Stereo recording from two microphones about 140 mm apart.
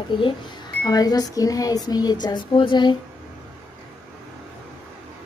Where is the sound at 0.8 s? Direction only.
25° left (ahead or behind).